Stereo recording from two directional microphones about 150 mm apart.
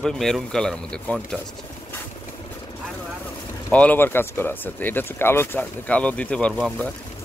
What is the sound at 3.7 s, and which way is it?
Speech, 10° left (ahead or behind).